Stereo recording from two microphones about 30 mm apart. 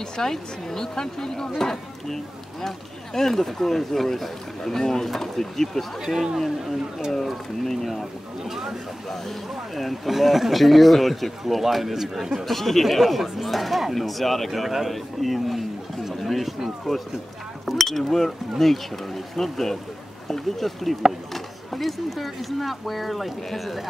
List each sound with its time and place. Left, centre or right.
0.2 s speech: centre
7.6 s speech: centre
8.5 s a man's voice: centre
9.8 s speech: centre
10.1 s a man's voice: centre
12.5 s speech: centre
14.5 s a man's voice: centre
17.6 s speech: centre